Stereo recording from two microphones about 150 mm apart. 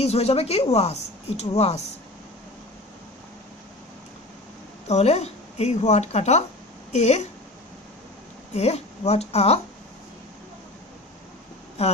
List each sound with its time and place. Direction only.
0.0 s a woman's voice: 45° left (ahead or behind)
4.8 s a woman's voice: 45° left (ahead or behind)
8.5 s a woman's voice: 45° left (ahead or behind)
11.8 s speech: 45° left (ahead or behind)